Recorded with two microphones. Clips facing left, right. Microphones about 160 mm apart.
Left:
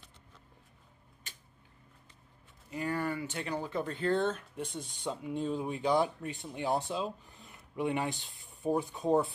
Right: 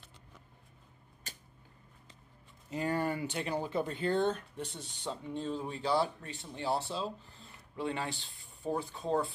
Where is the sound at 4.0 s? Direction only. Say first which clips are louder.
Left 1 dB; centre (ahead or behind).